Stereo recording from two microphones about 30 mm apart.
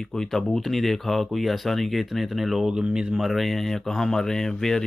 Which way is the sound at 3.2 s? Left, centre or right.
Centre.